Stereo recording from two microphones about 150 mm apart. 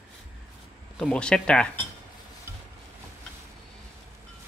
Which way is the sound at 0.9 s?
5° left (ahead or behind).